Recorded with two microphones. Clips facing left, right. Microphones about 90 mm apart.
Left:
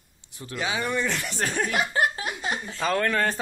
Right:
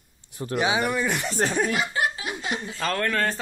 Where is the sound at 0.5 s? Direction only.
20° right (ahead or behind).